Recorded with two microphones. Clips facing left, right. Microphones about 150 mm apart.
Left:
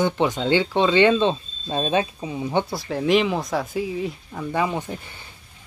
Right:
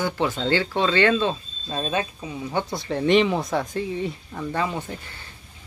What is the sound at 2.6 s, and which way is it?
Speech, 5° left (ahead or behind).